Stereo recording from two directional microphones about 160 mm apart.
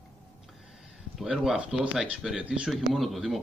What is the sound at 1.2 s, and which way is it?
Speech, centre (ahead or behind).